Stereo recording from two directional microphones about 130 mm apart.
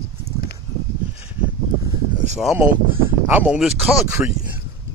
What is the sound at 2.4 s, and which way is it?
Speech, centre (ahead or behind).